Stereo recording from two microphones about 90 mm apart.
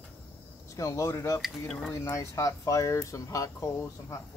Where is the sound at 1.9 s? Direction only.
35° left (ahead or behind).